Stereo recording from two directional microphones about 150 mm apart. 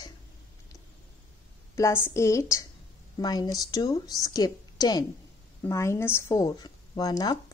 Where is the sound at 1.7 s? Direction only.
15° left (ahead or behind).